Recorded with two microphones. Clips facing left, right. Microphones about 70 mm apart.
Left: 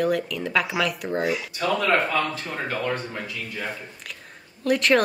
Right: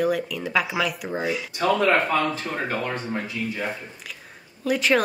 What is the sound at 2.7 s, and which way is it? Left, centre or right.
Speech, right.